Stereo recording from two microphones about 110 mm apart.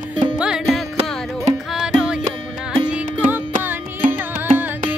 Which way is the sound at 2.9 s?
15° right (ahead or behind).